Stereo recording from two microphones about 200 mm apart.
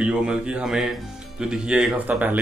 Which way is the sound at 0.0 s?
5° right (ahead or behind).